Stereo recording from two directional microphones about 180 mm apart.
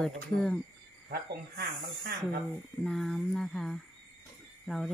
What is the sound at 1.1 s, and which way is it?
Speech, 60° right (ahead or behind).